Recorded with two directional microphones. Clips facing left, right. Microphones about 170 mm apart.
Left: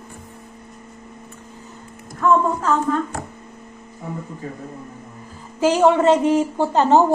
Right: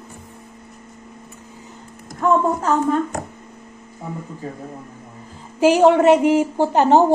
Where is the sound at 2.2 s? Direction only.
35° right (ahead or behind).